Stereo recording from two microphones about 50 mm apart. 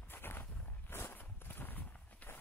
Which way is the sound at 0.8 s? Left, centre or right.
Left.